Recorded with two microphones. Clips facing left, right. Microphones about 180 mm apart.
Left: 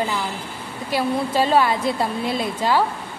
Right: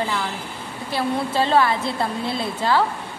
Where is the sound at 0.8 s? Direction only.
15° left (ahead or behind).